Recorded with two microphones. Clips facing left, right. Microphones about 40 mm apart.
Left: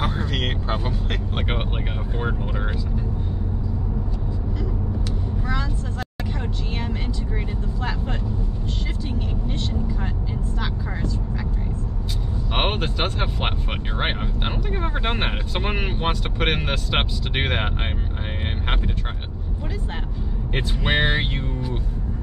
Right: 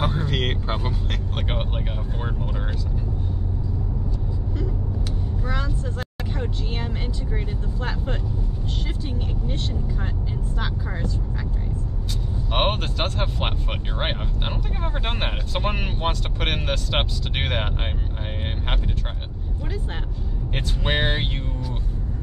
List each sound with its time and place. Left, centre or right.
1.3 s vehicle: left
12.5 s vehicle: centre
20.5 s speech: centre